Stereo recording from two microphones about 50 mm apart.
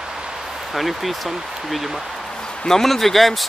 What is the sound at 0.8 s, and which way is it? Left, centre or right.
Speech, centre.